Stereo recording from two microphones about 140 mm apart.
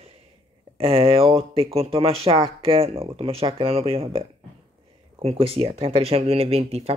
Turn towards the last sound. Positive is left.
turn(degrees=-45)  # may be behind; listen again after turning